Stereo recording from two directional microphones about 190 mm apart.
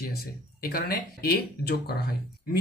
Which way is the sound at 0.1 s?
55° left (ahead or behind).